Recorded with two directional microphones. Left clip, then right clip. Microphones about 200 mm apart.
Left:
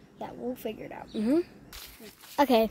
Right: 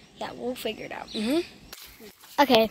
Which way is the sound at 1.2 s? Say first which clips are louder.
Even; 20° left (ahead or behind).